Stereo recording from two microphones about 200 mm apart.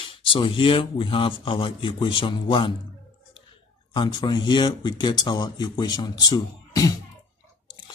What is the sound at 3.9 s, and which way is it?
Speech, 20° left (ahead or behind).